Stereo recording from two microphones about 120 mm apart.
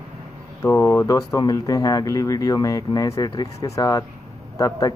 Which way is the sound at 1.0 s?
25° left (ahead or behind).